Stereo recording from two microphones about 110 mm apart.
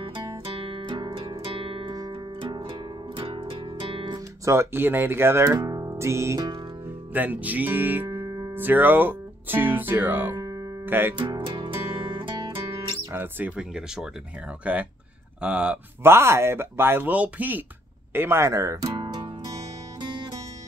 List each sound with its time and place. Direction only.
0.0 s music: 55° right (ahead or behind)
4.5 s speech: 20° right (ahead or behind)
7.2 s speech: 15° right (ahead or behind); by 8.5 s 30° right (ahead or behind)
8.5 s speech: 20° right (ahead or behind)
11.1 s music: 45° right (ahead or behind)
13.1 s speech: 20° right (ahead or behind)
13.6 s speech: 5° right (ahead or behind)
16.0 s speech: 25° right (ahead or behind)
18.9 s music: 35° right (ahead or behind)